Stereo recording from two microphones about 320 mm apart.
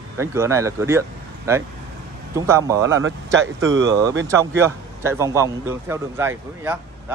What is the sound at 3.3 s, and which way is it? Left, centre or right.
Speech, right.